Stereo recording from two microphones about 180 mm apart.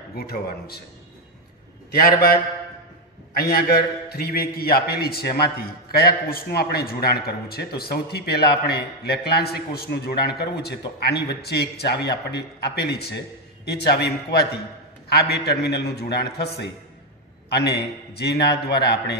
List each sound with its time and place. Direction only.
0.1 s a man's voice: 60° left (ahead or behind)
1.9 s a man's voice: 60° left (ahead or behind)
3.3 s a man's voice: 60° left (ahead or behind)